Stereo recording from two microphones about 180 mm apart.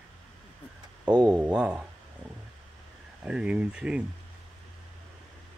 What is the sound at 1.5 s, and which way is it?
Speech, 5° right (ahead or behind).